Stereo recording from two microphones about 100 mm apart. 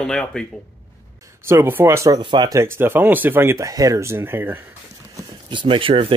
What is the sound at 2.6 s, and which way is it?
Speech, 20° right (ahead or behind).